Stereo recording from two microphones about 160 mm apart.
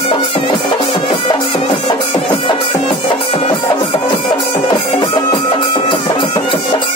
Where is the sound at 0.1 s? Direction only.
35° left (ahead or behind).